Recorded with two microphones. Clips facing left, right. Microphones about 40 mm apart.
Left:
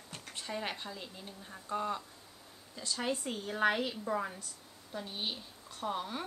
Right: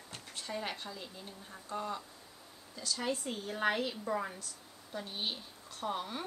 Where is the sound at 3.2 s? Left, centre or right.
Centre.